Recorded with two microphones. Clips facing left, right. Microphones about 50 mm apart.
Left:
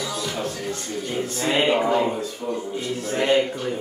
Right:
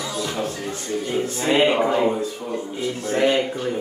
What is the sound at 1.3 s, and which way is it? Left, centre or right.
Speech, centre.